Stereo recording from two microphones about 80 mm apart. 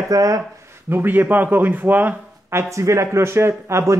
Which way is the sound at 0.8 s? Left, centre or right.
Right.